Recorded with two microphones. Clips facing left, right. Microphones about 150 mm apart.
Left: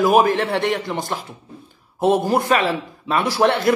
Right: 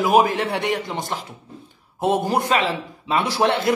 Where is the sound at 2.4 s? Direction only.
20° right (ahead or behind).